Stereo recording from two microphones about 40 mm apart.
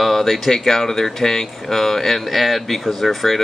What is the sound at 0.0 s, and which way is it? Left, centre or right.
Speech, centre.